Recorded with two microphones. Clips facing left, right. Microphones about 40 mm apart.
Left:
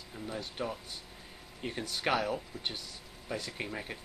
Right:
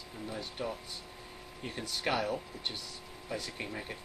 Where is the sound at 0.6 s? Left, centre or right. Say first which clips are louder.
Even; centre.